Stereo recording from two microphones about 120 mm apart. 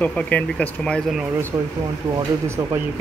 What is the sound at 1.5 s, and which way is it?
Speech, 15° right (ahead or behind).